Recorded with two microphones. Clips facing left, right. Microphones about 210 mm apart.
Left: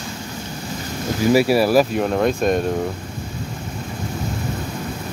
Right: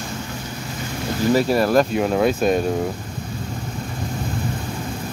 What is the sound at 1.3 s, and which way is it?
Speech, 10° left (ahead or behind).